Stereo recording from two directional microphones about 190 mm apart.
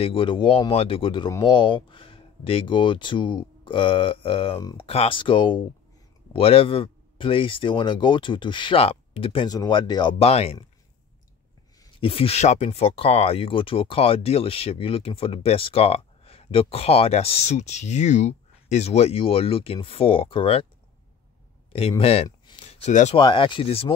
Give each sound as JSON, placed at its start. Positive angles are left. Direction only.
{"t": 0.0, "sound": "speech", "side_deg": 25}
{"t": 12.0, "sound": "speech", "side_deg": 30}
{"t": 21.7, "sound": "speech", "side_deg": 30}
{"t": 23.2, "sound": "speech", "side_deg": 25}